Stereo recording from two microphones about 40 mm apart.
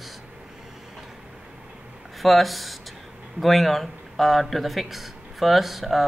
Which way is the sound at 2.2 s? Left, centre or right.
Centre.